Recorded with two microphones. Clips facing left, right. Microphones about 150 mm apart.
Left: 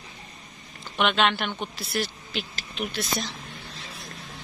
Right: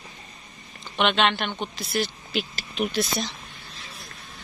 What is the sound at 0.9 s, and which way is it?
Speech, 5° left (ahead or behind).